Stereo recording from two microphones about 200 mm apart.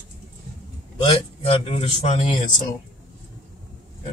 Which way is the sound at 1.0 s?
25° left (ahead or behind).